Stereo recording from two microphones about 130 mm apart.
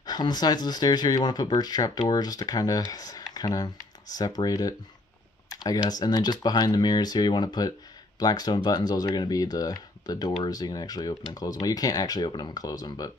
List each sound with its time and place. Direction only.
0.0 s speech: 30° left (ahead or behind)